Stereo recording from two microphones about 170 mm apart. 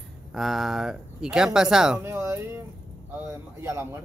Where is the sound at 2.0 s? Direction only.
15° right (ahead or behind).